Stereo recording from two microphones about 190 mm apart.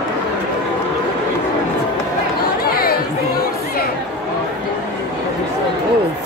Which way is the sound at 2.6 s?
50° left (ahead or behind).